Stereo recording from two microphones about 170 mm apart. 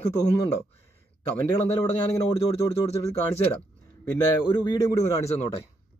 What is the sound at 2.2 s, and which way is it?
Speech, 35° left (ahead or behind).